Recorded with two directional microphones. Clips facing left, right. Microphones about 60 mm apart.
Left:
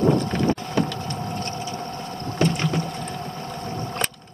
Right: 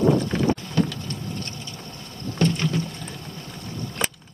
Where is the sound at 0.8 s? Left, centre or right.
Centre.